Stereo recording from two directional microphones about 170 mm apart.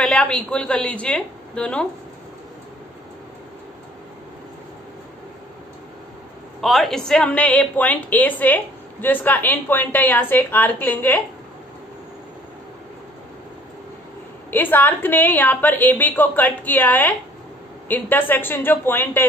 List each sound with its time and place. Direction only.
0.0 s a woman's voice: 5° left (ahead or behind)
6.6 s a woman's voice: centre (ahead or behind)
14.5 s a woman's voice: 10° left (ahead or behind)